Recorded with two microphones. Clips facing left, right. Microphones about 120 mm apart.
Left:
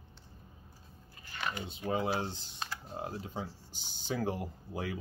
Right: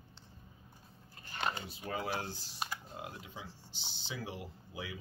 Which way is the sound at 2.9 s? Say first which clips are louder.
Left 6 dB; 35° left (ahead or behind).